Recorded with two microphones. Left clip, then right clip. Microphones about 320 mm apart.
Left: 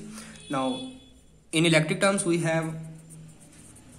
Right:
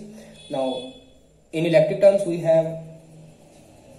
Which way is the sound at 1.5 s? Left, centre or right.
Left.